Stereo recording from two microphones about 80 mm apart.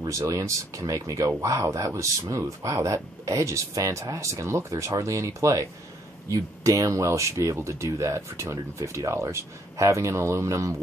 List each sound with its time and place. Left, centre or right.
0.2 s speech: right